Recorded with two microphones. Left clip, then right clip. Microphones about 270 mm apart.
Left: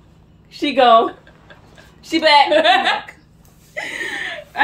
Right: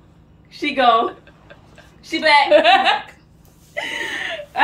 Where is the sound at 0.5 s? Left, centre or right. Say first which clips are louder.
Left 3 dB; left.